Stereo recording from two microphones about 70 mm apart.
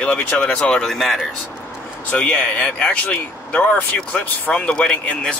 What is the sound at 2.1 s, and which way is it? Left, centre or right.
Speech, centre.